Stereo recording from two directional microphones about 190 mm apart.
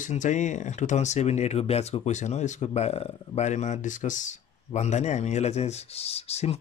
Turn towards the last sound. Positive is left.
turn(degrees=35)  # may be behind; listen again after turning